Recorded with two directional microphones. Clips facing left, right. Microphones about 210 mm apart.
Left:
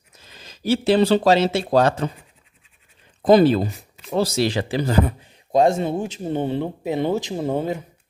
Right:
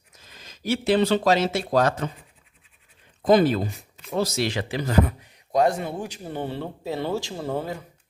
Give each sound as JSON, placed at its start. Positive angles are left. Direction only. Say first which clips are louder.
{"t": 0.2, "sound": "speech", "louder": "left 4 dB", "side_deg": 30}
{"t": 3.3, "sound": "speech", "louder": "left 4 dB", "side_deg": 30}